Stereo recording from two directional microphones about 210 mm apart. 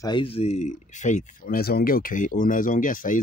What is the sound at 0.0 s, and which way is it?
Speech, 25° left (ahead or behind).